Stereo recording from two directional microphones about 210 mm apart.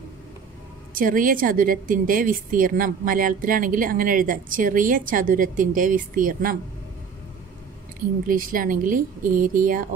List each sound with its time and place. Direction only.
0.9 s speech: 40° right (ahead or behind)
8.3 s speech: 40° right (ahead or behind)